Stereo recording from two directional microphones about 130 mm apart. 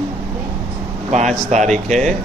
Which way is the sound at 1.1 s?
65° right (ahead or behind).